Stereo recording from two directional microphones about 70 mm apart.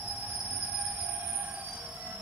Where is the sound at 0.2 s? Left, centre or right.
Right.